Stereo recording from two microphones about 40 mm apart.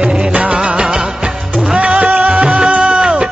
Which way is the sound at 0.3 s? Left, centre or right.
Right.